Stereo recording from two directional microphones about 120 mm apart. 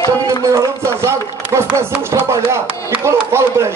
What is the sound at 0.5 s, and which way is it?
Speech, 25° right (ahead or behind).